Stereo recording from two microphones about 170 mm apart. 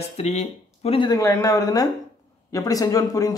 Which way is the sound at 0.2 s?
40° left (ahead or behind).